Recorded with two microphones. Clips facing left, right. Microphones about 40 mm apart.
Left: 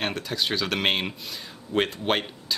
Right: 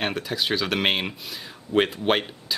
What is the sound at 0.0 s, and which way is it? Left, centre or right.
Speech, centre.